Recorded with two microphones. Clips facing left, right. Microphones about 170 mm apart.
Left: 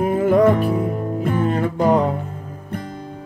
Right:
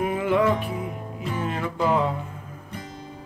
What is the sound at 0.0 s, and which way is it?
Music, 40° left (ahead or behind).